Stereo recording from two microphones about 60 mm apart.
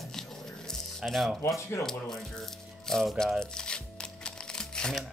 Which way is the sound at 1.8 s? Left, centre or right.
Centre.